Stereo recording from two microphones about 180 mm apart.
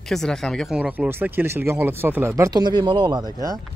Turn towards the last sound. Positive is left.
turn(degrees=-25)  # may be behind; listen again after turning